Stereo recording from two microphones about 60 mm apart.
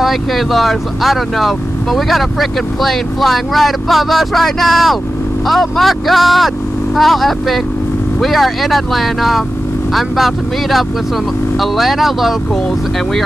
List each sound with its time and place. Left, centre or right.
0.0 s speech: centre